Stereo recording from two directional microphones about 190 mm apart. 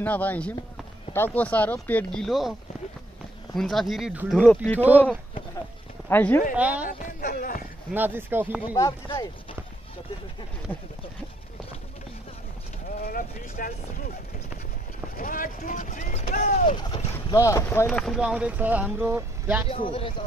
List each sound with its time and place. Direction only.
0.0 s speech: 10° left (ahead or behind)
3.5 s speech: centre (ahead or behind)
4.4 s speech: 5° left (ahead or behind)
6.0 s speech: 10° left (ahead or behind)
6.5 s speech: 5° right (ahead or behind)
6.9 s speech: 45° left (ahead or behind)
7.9 s speech: 10° right (ahead or behind)
8.7 s speech: 20° left (ahead or behind)
13.0 s speech: 50° left (ahead or behind)
15.1 s speech: 45° left (ahead or behind)
17.1 s speech: 15° left (ahead or behind)
17.8 s speech: centre (ahead or behind)
19.7 s speech: 30° left (ahead or behind)